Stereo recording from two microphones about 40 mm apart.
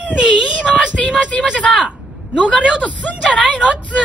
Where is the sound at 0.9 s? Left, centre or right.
Left.